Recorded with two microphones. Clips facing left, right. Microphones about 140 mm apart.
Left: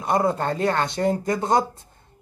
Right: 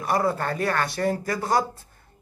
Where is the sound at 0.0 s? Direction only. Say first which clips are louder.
Left 2 dB; 20° left (ahead or behind).